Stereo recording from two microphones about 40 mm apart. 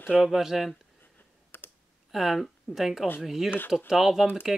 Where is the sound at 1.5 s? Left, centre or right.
Left.